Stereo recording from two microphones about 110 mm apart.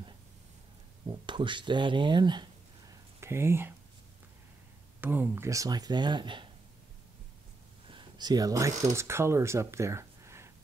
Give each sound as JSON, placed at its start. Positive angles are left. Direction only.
{"t": 1.0, "sound": "speech", "side_deg": -45}
{"t": 2.9, "sound": "a sound", "side_deg": -25}
{"t": 5.0, "sound": "speech", "side_deg": -15}
{"t": 7.9, "sound": "speech", "side_deg": -45}